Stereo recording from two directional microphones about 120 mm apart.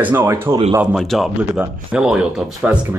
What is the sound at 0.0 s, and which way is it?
Speech, 20° right (ahead or behind).